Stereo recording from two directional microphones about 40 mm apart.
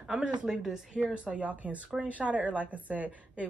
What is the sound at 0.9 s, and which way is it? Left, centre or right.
A woman's voice, right.